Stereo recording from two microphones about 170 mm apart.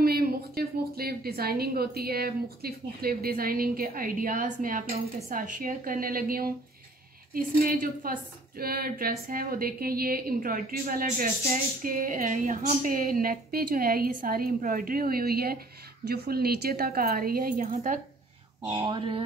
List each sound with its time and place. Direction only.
0.0 s a woman's voice: 65° right (ahead or behind)
18.9 s speech: 30° right (ahead or behind)